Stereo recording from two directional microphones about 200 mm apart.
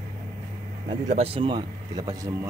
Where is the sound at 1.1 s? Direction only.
30° right (ahead or behind).